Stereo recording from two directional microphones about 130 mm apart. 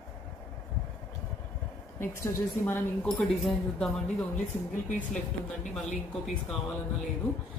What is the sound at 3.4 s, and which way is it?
Speech, 5° left (ahead or behind).